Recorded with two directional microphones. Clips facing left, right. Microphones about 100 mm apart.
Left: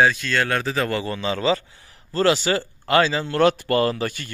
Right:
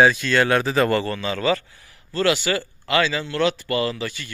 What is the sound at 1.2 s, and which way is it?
Speech, 25° left (ahead or behind).